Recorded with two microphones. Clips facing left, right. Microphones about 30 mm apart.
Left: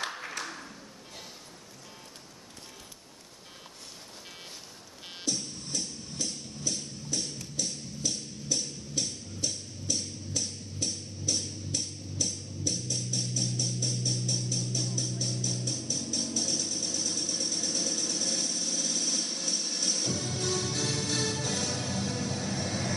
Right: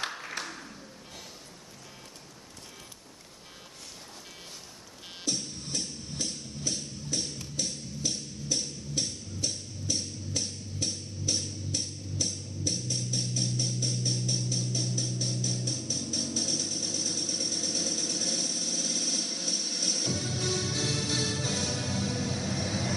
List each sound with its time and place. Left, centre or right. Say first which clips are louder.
5.2 s music: even; centre